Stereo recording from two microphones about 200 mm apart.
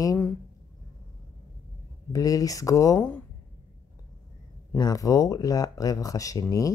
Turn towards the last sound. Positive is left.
turn(degrees=15)  # may be behind; listen again after turning